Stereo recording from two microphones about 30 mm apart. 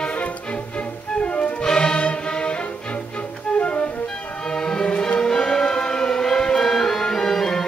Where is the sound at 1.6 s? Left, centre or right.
Left.